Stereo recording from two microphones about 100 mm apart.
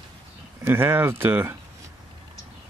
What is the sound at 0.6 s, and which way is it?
Speech, 25° right (ahead or behind).